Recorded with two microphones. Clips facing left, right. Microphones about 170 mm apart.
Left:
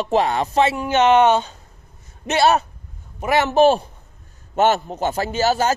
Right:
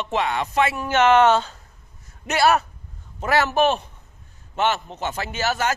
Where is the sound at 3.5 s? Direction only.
30° left (ahead or behind).